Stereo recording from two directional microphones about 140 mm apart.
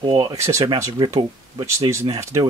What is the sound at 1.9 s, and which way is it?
Speech, 25° right (ahead or behind).